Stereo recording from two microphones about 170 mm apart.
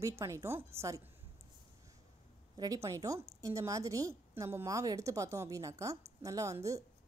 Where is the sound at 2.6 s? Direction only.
20° right (ahead or behind).